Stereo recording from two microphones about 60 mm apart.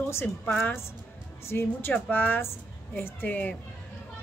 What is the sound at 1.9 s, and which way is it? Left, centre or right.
A woman's voice, left.